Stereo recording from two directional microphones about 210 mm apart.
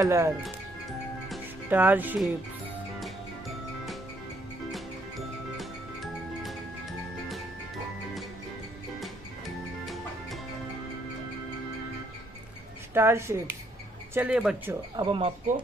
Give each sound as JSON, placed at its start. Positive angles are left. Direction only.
{"t": 0.0, "sound": "speech", "side_deg": -15}
{"t": 1.3, "sound": "speech", "side_deg": -10}
{"t": 4.6, "sound": "music", "side_deg": 0}
{"t": 12.9, "sound": "speech", "side_deg": -10}
{"t": 14.7, "sound": "speech", "side_deg": -20}